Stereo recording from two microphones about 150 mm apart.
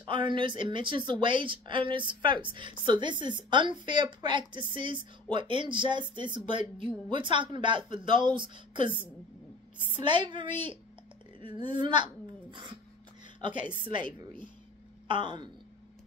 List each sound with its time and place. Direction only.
0.0 s a woman's voice: 35° right (ahead or behind)
9.9 s a woman's voice: 30° right (ahead or behind)